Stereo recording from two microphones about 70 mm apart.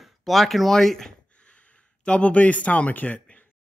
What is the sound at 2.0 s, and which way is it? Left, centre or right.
Speech, centre.